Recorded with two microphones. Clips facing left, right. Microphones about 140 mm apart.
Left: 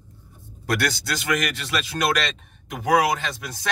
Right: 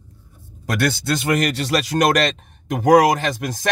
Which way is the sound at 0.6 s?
25° right (ahead or behind).